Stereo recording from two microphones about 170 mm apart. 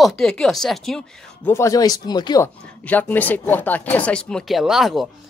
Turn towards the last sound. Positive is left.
turn(degrees=0)  # may be behind; listen again after turning